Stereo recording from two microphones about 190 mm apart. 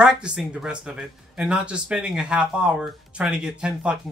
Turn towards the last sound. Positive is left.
turn(degrees=-5)  # may be behind; listen again after turning